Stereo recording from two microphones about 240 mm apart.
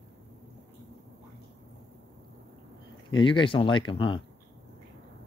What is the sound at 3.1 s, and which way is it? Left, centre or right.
Speech, centre.